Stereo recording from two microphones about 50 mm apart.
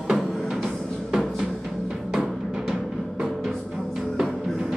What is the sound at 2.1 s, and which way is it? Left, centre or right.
Music, centre.